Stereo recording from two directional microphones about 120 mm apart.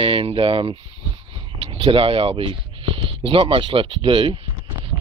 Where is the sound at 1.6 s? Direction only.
50° right (ahead or behind).